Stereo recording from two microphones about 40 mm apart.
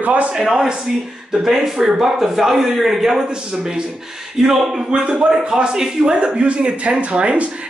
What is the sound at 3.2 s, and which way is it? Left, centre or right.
Speech, right.